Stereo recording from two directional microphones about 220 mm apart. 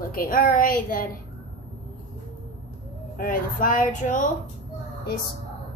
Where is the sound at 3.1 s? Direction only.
40° left (ahead or behind).